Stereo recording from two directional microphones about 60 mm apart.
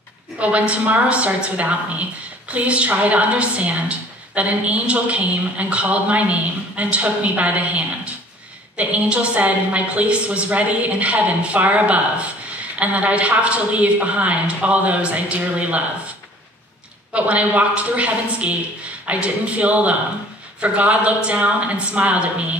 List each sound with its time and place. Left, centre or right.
0.4 s a woman's voice: right
17.1 s a woman's voice: right